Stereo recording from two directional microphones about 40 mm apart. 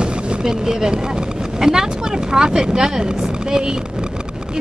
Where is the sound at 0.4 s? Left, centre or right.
Centre.